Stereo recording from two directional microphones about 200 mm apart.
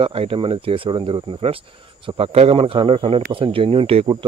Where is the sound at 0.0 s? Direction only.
30° right (ahead or behind).